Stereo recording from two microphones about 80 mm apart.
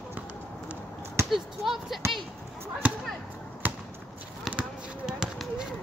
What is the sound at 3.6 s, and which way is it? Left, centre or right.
Basketball bounce, right.